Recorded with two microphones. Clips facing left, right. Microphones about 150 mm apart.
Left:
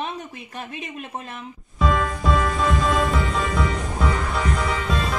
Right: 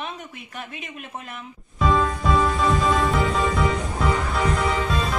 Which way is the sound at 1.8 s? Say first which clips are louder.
Right 1 dB; centre (ahead or behind).